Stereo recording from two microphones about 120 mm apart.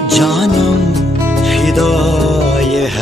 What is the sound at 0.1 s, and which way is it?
Speech, centre (ahead or behind).